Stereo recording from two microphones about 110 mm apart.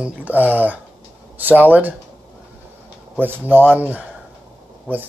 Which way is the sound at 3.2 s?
20° right (ahead or behind).